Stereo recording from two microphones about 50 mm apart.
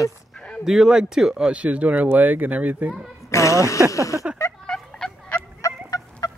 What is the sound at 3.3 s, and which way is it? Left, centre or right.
Speech, left.